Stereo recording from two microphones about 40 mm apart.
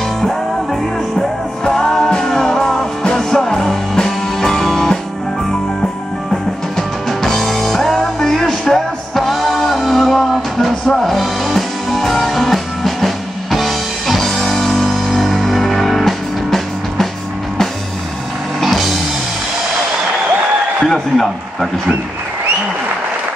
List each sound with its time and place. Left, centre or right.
1.6 s music: centre
3.0 s music: left
3.3 s music: centre
7.1 s music: centre
18.6 s music: centre
20.8 s a sound: centre